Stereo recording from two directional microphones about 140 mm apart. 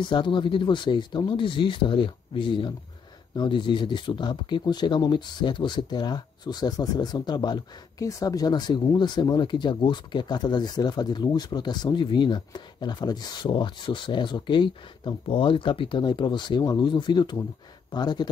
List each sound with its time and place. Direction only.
0.0 s speech: 35° left (ahead or behind)